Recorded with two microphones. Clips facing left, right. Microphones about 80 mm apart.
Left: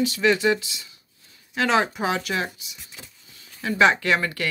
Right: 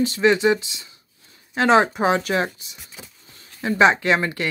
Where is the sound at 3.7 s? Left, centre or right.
Right.